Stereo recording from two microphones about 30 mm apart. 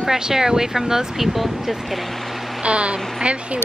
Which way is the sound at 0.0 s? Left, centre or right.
Centre.